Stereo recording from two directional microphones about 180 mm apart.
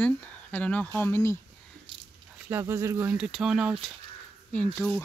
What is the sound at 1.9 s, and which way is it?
Biting, 25° right (ahead or behind).